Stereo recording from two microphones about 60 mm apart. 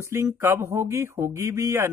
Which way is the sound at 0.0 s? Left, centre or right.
Right.